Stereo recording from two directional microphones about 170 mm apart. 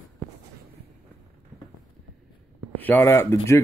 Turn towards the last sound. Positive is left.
turn(degrees=15)  # may be behind; listen again after turning